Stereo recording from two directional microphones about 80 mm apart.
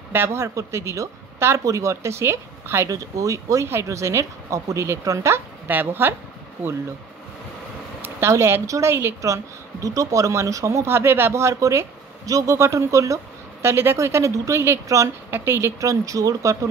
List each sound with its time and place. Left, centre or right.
0.1 s speech: right
5.7 s speech: right
8.0 s speech: right
15.3 s speech: right